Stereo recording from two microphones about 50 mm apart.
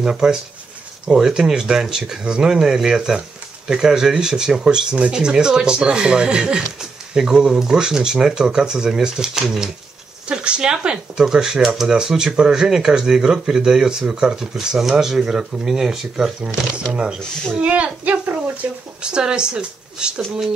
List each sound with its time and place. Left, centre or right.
0.0 s speech: centre
16.4 s speech: right
19.0 s speech: centre